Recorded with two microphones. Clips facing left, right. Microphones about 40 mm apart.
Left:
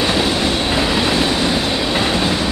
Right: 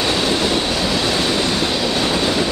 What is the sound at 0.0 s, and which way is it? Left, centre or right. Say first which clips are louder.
Train: left 1 dB; centre.